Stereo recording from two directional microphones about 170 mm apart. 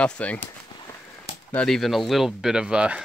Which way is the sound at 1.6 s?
Centre (ahead or behind).